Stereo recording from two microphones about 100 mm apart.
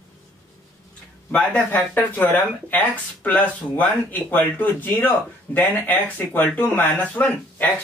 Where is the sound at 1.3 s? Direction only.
15° left (ahead or behind).